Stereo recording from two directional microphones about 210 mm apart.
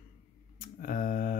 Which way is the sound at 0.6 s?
40° left (ahead or behind).